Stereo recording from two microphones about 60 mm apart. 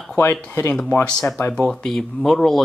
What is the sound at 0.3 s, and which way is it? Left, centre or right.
Speech, left.